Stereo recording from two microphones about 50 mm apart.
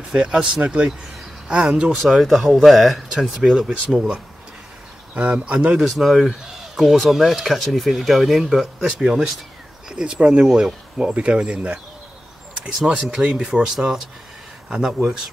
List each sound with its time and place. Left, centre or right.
0.1 s speech: centre
2.0 s speech: centre
5.8 s speech: centre; by 11.8 s right
12.8 s speech: centre